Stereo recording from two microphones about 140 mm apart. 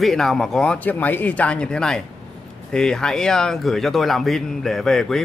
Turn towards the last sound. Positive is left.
turn(degrees=0)  # may be behind; listen again after turning